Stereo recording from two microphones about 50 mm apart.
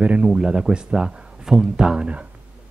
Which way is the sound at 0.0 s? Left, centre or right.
Right.